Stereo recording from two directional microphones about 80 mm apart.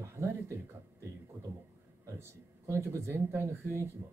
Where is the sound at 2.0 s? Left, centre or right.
Right.